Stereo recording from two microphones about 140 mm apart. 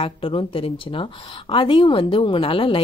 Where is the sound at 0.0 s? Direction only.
40° left (ahead or behind).